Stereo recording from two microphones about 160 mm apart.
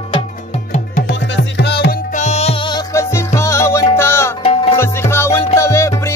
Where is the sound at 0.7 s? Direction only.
60° left (ahead or behind); by 2.0 s 90° left.